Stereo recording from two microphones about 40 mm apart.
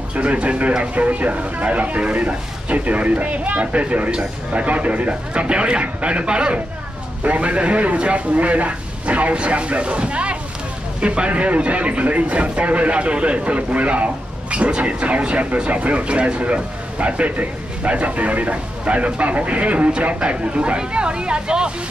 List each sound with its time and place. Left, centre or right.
0.1 s speech: right
4.1 s speech: right
4.6 s speech: right